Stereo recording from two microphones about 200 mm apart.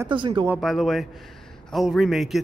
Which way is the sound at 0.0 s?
25° right (ahead or behind).